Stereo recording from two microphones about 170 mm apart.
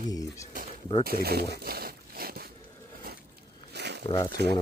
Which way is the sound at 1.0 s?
65° right (ahead or behind).